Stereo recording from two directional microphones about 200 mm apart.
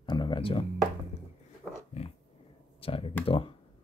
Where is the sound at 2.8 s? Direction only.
30° left (ahead or behind).